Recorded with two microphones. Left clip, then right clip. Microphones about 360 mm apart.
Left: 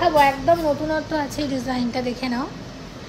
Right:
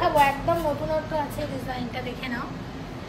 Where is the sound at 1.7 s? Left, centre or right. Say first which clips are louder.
Left 7 dB; centre.